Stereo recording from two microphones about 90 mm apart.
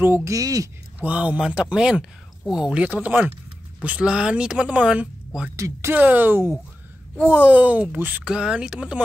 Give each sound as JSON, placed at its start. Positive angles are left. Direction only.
{"t": 0.0, "sound": "speech", "side_deg": -25}
{"t": 0.3, "sound": "speech", "side_deg": -40}
{"t": 0.9, "sound": "speech", "side_deg": -15}
{"t": 5.6, "sound": "speech", "side_deg": -30}
{"t": 5.9, "sound": "speech", "side_deg": -20}
{"t": 8.2, "sound": "speech", "side_deg": -10}